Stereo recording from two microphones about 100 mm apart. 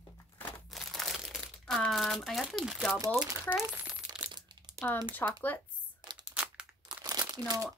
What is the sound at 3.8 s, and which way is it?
Crumpling, 10° right (ahead or behind).